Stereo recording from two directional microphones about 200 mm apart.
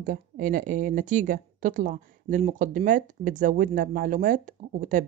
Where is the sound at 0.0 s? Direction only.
40° right (ahead or behind).